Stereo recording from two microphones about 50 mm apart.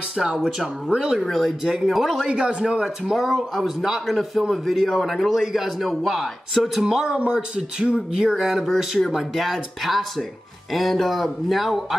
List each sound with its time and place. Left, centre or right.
0.2 s a man's voice: centre
1.2 s a man's voice: centre
2.2 s a man's voice: centre
3.2 s a man's voice: centre